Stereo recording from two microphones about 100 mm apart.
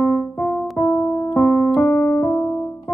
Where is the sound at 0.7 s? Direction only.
55° left (ahead or behind).